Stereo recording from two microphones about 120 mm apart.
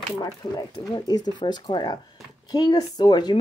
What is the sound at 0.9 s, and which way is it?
Speech, 35° left (ahead or behind).